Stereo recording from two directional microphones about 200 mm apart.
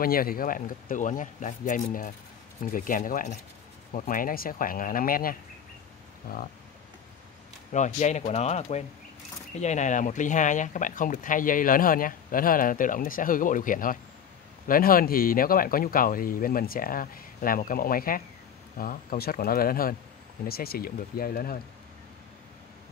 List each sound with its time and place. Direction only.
0.0 s speech: 45° left (ahead or behind)
7.7 s speech: 35° left (ahead or behind)